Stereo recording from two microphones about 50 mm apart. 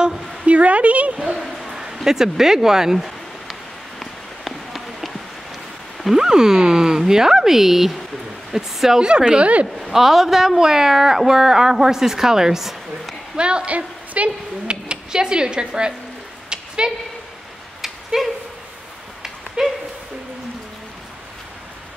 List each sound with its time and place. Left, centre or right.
0.5 s speech: right
1.3 s a sound: centre
2.0 s speech: centre
4.5 s run: centre
6.1 s a man's voice: centre
9.8 s a man's voice: centre
13.4 s a woman's voice: right
16.4 s a sound: centre
17.8 s a sound: centre